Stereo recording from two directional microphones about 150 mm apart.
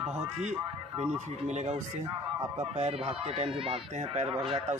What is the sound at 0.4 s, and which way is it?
Speech, 50° right (ahead or behind).